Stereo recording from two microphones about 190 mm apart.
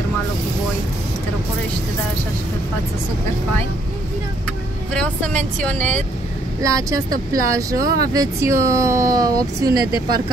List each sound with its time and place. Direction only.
5.6 s speech: 5° left (ahead or behind)
6.6 s speech: 15° right (ahead or behind)